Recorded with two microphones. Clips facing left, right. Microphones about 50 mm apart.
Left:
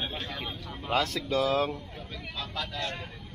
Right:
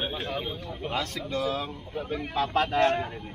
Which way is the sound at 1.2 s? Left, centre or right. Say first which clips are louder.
Even; centre.